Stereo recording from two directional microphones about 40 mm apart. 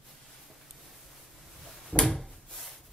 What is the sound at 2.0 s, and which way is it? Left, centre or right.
Drawer open or close, centre.